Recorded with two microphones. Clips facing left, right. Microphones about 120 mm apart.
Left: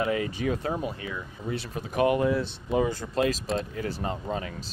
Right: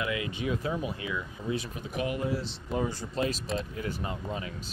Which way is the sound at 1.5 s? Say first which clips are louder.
Left 1 dB; 65° left (ahead or behind).